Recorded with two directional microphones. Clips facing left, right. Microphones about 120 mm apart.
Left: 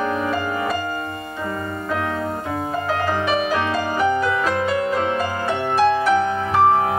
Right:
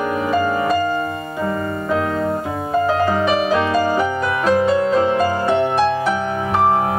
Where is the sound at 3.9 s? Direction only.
20° right (ahead or behind).